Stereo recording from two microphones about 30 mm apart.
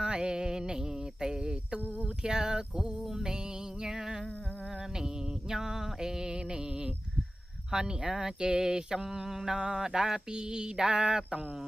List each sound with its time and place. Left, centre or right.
0.0 s music: right
1.2 s a sound: right
3.8 s music: right
7.7 s speech: centre
9.8 s mantra: centre
10.3 s speech: right